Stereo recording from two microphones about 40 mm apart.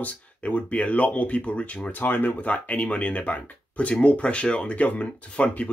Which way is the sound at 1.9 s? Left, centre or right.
Left.